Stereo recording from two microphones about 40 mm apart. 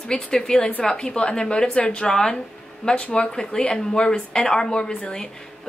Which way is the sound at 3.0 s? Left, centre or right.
Left.